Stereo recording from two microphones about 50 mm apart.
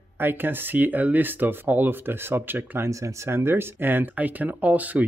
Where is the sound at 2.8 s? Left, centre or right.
Right.